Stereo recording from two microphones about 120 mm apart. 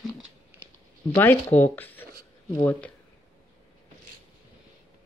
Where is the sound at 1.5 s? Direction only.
15° left (ahead or behind).